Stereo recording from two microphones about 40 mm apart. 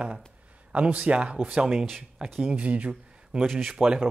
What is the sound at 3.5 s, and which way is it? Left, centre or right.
Speech, centre.